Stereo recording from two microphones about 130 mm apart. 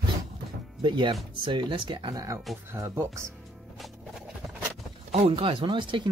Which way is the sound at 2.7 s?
20° right (ahead or behind).